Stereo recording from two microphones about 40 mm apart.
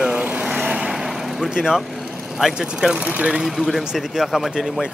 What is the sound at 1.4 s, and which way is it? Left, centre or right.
Speech, centre.